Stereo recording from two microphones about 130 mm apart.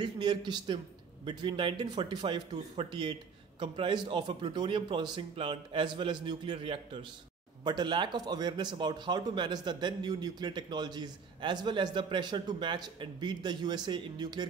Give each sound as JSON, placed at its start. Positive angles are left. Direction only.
{"t": 0.0, "sound": "a man's voice", "side_deg": -35}